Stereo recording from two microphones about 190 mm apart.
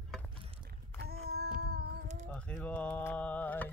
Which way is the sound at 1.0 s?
55° right (ahead or behind).